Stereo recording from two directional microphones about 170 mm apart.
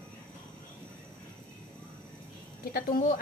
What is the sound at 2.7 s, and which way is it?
Speech, 60° left (ahead or behind).